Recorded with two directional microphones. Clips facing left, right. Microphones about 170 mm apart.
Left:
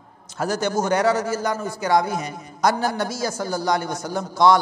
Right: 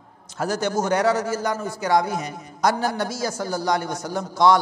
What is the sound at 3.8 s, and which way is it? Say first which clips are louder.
Speech: left 1 dB; 25° left (ahead or behind).